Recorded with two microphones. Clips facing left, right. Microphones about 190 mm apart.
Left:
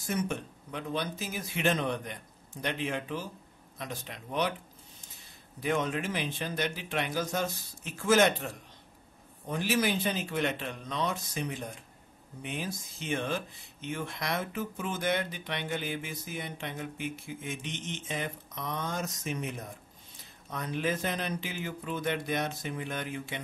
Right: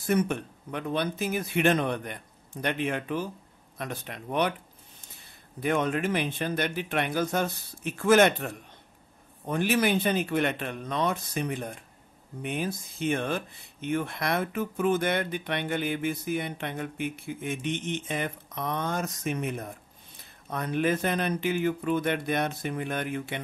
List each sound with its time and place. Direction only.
0.0 s speech: 60° right (ahead or behind)
5.6 s speech: 55° right (ahead or behind)